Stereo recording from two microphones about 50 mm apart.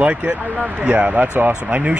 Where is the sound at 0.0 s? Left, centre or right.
Right.